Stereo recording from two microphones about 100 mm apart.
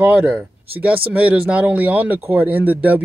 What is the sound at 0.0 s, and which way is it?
Speech, 15° right (ahead or behind).